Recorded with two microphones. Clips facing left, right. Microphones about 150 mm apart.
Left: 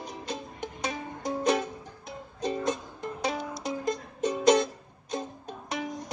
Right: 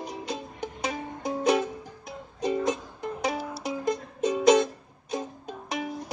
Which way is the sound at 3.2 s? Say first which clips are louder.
Right 1 dB; 5° right (ahead or behind).